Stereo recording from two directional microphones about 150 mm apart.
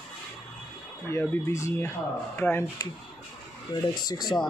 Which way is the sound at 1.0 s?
15° left (ahead or behind).